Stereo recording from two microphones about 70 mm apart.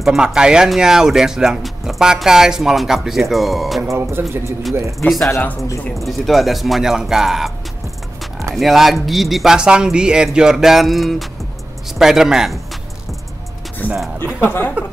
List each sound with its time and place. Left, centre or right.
0.0 s speech: centre
3.8 s speech: right
5.0 s speech: centre
8.5 s speech: centre
13.8 s speech: left